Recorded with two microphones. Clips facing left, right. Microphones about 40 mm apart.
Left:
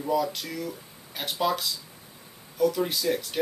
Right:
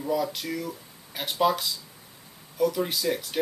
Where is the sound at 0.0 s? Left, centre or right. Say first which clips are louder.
Left 1 dB; centre.